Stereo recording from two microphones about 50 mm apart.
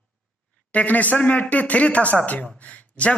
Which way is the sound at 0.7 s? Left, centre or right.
Left.